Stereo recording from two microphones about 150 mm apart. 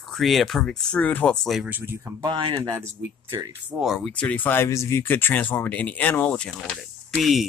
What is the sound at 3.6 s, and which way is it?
Speech, 5° right (ahead or behind).